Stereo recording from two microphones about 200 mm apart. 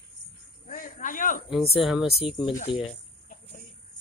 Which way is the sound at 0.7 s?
45° left (ahead or behind).